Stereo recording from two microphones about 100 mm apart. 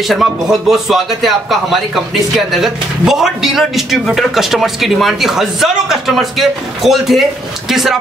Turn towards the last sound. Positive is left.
turn(degrees=-5)  # may be behind; listen again after turning